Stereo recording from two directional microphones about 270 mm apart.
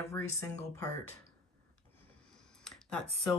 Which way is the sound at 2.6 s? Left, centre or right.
Centre.